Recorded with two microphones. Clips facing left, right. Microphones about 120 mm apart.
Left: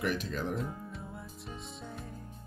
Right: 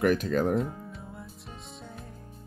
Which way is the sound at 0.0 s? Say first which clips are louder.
Right 9 dB; 50° right (ahead or behind).